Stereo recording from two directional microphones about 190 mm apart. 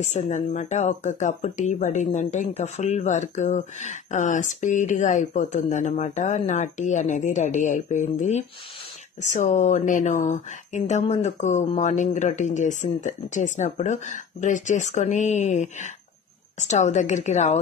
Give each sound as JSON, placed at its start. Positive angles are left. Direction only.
{"t": 0.0, "sound": "speech", "side_deg": 40}